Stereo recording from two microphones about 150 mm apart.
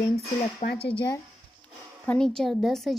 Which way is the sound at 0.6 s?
55° left (ahead or behind).